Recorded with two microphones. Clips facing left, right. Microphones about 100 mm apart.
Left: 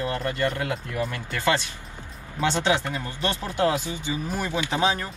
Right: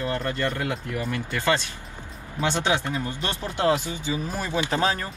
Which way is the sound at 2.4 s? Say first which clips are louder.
Left 1 dB; 15° right (ahead or behind).